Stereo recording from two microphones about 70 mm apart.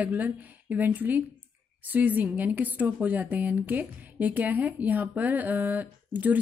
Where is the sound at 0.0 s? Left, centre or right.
Right.